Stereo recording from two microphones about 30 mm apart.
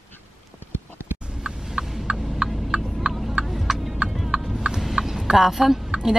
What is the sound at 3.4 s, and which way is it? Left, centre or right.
Vehicle, centre.